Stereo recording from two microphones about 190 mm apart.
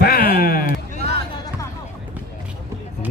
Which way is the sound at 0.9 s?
55° right (ahead or behind).